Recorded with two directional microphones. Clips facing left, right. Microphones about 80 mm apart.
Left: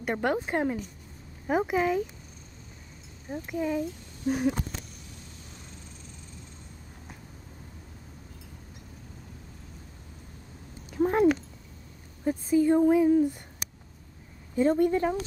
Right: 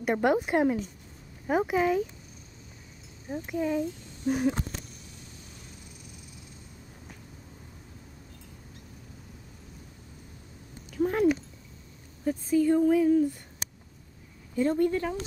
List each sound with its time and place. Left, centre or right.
0.0 s a woman's voice: centre
3.3 s speech: centre
10.9 s a sound: left
12.3 s speech: left
14.5 s speech: left